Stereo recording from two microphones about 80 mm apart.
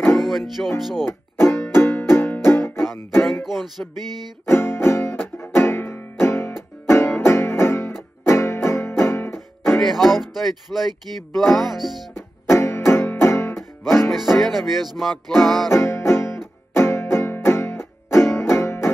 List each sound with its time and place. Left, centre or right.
0.2 s music: centre
1.0 s music: left
3.4 s music: centre
4.5 s music: left
9.8 s music: centre
12.4 s music: left
14.1 s music: centre
15.7 s music: left